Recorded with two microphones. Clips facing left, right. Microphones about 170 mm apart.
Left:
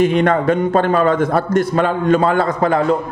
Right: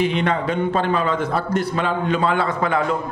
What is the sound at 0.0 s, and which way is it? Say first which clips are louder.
A man's voice: left 6 dB; 50° left (ahead or behind).